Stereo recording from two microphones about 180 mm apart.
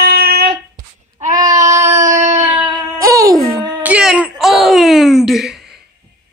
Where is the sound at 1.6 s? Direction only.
15° right (ahead or behind).